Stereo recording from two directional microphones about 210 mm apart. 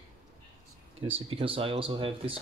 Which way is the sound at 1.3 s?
25° right (ahead or behind).